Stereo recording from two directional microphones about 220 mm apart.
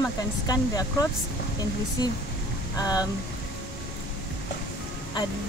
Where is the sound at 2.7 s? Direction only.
15° left (ahead or behind).